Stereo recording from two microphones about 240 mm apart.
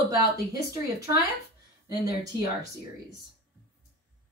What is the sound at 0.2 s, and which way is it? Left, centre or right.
Speech, centre.